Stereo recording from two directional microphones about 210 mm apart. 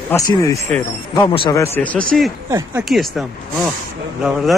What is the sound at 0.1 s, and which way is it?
Speech, 15° left (ahead or behind).